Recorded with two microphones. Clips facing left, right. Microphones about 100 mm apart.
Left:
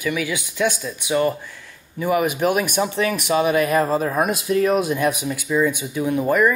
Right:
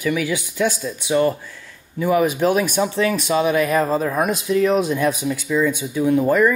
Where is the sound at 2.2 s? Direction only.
15° left (ahead or behind).